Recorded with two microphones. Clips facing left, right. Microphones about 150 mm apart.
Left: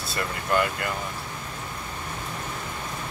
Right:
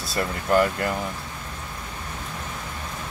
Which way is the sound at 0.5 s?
40° right (ahead or behind).